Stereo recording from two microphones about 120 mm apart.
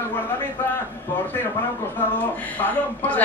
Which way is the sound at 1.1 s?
15° left (ahead or behind).